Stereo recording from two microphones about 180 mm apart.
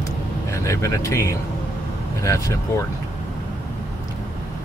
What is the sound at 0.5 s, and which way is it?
Speech, 15° left (ahead or behind).